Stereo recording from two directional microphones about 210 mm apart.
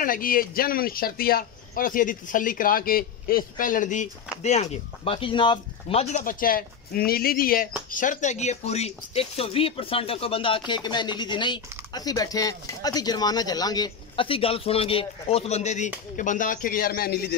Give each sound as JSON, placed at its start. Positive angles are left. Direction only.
{"t": 0.0, "sound": "speech", "side_deg": 40}